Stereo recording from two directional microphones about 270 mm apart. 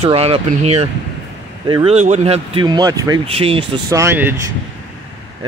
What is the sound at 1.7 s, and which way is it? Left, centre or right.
Speech, centre.